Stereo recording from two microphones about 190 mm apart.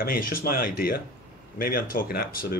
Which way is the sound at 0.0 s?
50° left (ahead or behind).